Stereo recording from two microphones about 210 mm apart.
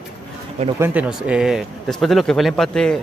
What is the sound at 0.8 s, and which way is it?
Speech, 5° right (ahead or behind).